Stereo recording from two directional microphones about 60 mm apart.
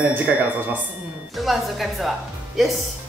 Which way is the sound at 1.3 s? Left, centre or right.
Centre.